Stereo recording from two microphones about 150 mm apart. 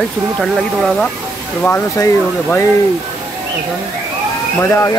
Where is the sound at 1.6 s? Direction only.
10° left (ahead or behind).